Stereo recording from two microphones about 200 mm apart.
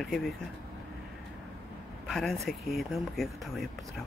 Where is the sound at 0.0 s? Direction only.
Centre (ahead or behind).